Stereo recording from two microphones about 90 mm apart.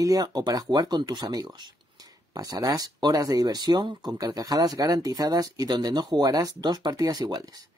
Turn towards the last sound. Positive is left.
turn(degrees=-45)  # may be behind; listen again after turning